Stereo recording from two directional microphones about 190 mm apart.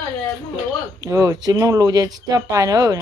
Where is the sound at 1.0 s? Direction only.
15° right (ahead or behind).